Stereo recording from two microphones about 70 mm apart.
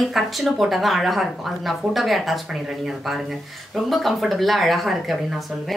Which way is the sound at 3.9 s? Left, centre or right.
Centre.